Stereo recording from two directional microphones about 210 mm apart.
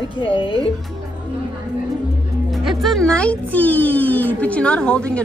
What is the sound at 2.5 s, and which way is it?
A child's voice, centre (ahead or behind).